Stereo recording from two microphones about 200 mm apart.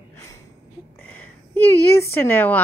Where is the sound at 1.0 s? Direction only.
10° left (ahead or behind).